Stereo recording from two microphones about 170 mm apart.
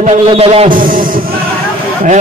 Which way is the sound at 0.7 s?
55° right (ahead or behind).